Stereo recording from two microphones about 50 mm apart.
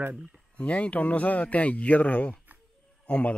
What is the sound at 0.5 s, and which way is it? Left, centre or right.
Speech, left.